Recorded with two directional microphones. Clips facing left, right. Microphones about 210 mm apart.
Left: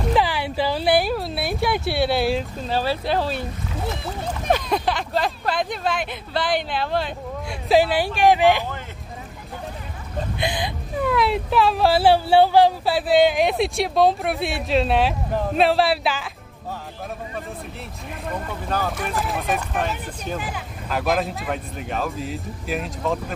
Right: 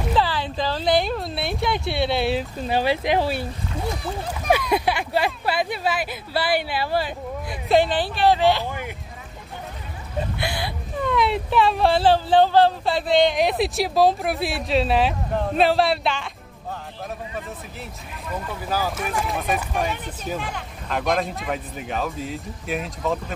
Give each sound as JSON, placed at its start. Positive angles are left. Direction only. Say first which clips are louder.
{"t": 0.1, "sound": "speech", "louder": "left 1 dB", "side_deg": 15}
{"t": 2.7, "sound": "speech", "louder": "right 2 dB", "side_deg": -15}
{"t": 3.9, "sound": "speech", "louder": "even", "side_deg": 0}
{"t": 10.4, "sound": "speech", "louder": "left 2 dB", "side_deg": 15}
{"t": 11.0, "sound": "speech", "louder": "left 1 dB", "side_deg": 5}
{"t": 18.3, "sound": "speech", "louder": "even", "side_deg": -5}